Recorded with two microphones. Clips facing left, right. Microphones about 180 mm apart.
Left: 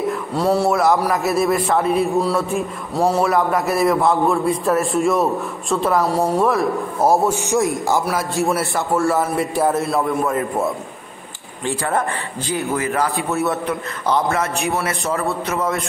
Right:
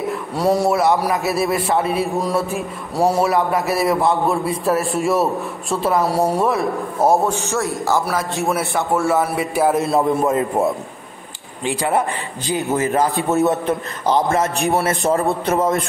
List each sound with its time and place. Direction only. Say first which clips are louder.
0.3 s a man's voice: right 1 dB; 15° right (ahead or behind)
0.7 s a man's voice: even; centre (ahead or behind)
6.4 s a man's voice: left 1 dB; centre (ahead or behind)
7.3 s a man's voice: left 3 dB; 15° left (ahead or behind)
8.1 s a man's voice: left 1 dB; centre (ahead or behind)
9.8 s a man's voice: right 2 dB; 20° right (ahead or behind)
11.6 s a man's voice: right 2 dB; 15° right (ahead or behind); by 15.8 s 35° right (ahead or behind)